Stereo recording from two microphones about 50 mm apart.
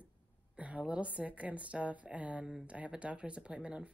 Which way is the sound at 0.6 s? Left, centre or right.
Right.